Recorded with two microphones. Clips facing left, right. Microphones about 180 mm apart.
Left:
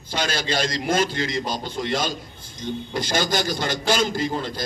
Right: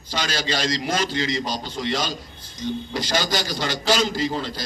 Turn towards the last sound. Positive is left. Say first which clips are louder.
# even
turn(degrees=50)  # may be behind; listen again after turning